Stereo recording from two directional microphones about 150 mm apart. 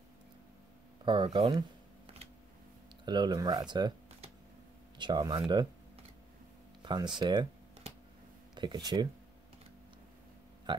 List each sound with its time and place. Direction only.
1.0 s speech: 30° right (ahead or behind)
3.1 s speech: 30° right (ahead or behind)
4.9 s speech: 30° right (ahead or behind)
6.8 s speech: 30° right (ahead or behind)
8.5 s speech: 30° right (ahead or behind)
10.7 s speech: 30° right (ahead or behind)